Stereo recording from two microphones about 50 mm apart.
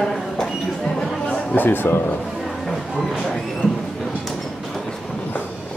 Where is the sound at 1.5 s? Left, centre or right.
Left.